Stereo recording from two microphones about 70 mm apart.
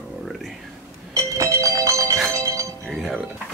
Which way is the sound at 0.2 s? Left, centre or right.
Centre.